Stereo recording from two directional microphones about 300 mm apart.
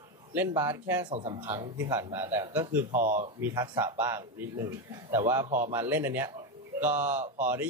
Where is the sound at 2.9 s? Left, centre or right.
Right.